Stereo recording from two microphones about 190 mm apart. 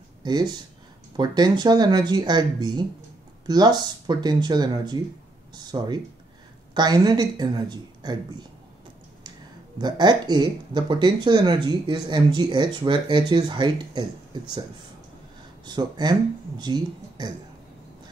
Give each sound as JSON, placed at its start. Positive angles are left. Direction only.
{"t": 0.2, "sound": "speech", "side_deg": -20}
{"t": 9.8, "sound": "speech", "side_deg": -20}
{"t": 15.6, "sound": "speech", "side_deg": -20}